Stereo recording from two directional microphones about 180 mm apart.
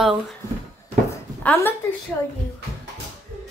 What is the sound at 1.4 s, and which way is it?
Speech, 10° left (ahead or behind).